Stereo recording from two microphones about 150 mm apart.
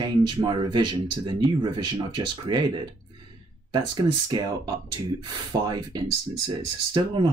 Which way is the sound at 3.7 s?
30° right (ahead or behind).